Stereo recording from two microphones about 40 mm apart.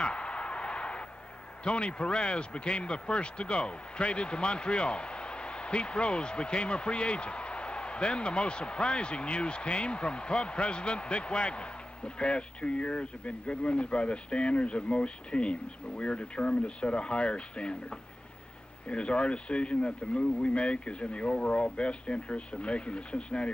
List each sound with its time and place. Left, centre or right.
0.0 s a sound: left
1.6 s speech: left
18.9 s speech: left